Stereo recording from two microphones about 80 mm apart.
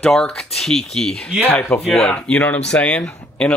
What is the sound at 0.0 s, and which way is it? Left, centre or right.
Speech, centre.